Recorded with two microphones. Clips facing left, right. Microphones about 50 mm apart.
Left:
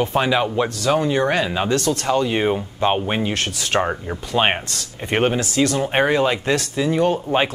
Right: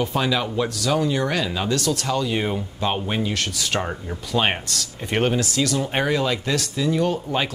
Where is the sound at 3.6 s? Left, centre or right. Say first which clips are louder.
Left 8 dB; left.